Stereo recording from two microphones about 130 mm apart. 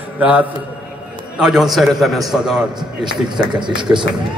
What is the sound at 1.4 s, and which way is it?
A man's voice, 5° right (ahead or behind).